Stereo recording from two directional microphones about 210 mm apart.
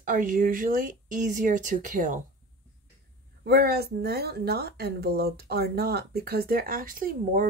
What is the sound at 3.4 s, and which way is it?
Speech, 50° right (ahead or behind).